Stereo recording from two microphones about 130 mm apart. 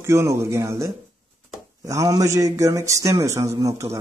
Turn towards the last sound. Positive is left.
turn(degrees=-25)  # may be behind; listen again after turning